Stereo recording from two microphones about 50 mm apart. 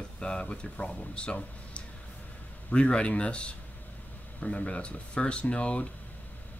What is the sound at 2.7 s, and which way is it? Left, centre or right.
Speech, left.